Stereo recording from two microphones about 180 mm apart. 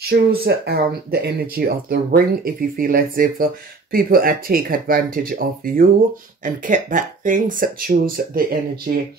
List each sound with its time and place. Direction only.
0.1 s speech: 60° right (ahead or behind)